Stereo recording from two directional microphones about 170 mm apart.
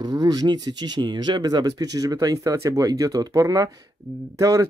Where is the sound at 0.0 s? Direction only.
20° right (ahead or behind).